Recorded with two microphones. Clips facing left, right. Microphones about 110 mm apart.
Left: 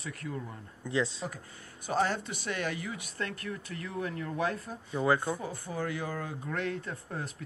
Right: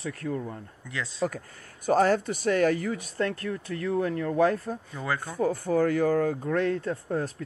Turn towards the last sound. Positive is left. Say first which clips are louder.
# right 10 dB
turn(degrees=-40)  # may be behind; listen again after turning